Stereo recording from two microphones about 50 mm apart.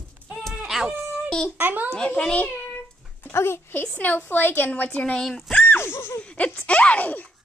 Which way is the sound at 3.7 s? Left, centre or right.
Left.